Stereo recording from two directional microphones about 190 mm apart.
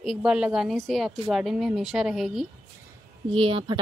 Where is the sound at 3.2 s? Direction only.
25° right (ahead or behind).